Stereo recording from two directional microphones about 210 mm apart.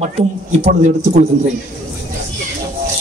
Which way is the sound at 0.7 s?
35° right (ahead or behind).